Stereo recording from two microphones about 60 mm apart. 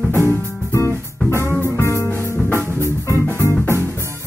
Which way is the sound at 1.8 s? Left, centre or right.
Left.